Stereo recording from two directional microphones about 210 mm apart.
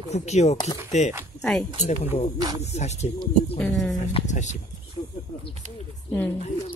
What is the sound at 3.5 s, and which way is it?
Speech, 5° left (ahead or behind).